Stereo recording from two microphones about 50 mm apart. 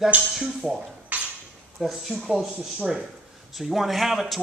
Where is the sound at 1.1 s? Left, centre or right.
Right.